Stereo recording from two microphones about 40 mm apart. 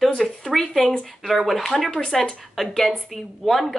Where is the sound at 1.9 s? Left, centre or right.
Left.